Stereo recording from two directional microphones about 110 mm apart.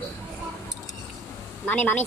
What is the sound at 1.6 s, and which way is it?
Speech, 15° left (ahead or behind).